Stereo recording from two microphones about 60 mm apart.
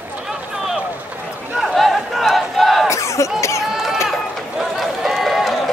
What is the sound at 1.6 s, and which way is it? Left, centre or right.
Battle cry, centre.